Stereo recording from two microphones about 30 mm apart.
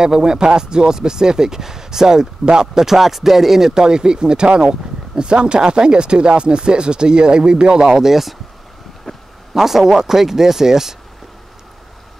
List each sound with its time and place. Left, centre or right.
0.0 s speech: right
8.1 s speech: centre
9.1 s a sound: left
9.5 s speech: centre